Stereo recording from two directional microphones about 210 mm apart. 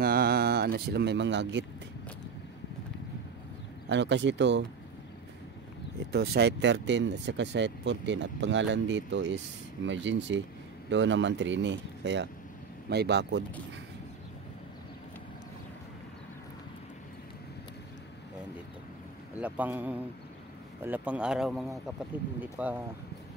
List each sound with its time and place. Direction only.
0.0 s a sound: 45° right (ahead or behind)
3.9 s speech: 60° right (ahead or behind)
6.1 s speech: 50° right (ahead or behind)
19.4 s speech: 5° right (ahead or behind)